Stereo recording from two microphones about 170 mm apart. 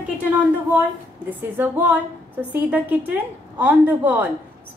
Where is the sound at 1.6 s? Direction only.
10° right (ahead or behind).